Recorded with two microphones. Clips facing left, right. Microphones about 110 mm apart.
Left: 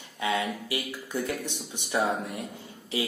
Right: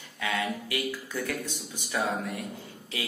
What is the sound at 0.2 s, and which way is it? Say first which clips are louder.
A man's voice: left 2 dB; 25° left (ahead or behind).